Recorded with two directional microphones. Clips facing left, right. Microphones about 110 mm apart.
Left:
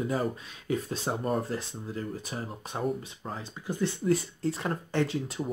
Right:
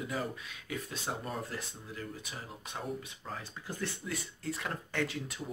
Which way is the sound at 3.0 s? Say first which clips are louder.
Left 5 dB; 25° left (ahead or behind).